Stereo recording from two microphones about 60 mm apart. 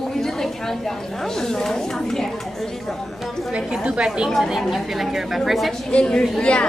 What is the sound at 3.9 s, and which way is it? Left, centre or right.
Speech, centre.